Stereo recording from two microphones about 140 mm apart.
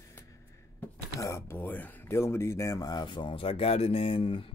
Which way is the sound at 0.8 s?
20° left (ahead or behind).